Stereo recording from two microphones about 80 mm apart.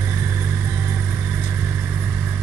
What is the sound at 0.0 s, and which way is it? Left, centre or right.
Vehicle, right.